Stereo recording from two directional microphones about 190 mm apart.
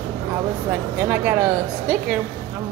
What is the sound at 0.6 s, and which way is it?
Speech, 10° right (ahead or behind).